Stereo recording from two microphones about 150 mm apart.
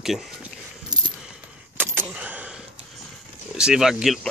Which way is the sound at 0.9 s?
25° right (ahead or behind).